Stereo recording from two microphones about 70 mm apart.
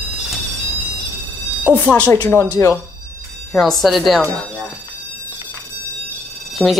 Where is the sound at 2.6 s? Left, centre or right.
Left.